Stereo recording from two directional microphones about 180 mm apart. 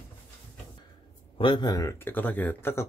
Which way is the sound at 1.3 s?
25° left (ahead or behind).